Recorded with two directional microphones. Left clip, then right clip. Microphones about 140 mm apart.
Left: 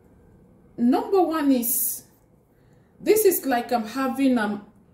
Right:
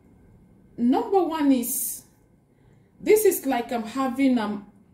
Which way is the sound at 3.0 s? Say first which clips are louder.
Even; 20° left (ahead or behind).